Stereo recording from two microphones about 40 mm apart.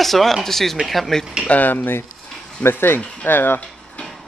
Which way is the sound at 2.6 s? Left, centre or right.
Left.